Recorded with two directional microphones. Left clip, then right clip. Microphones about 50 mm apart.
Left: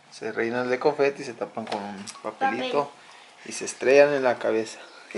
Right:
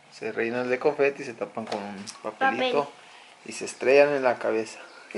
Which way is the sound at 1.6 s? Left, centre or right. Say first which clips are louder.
Left 1 dB; centre.